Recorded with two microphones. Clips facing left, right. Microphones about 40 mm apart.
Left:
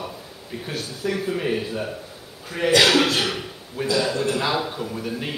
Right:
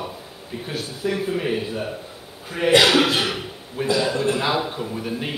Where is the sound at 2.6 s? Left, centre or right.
Right.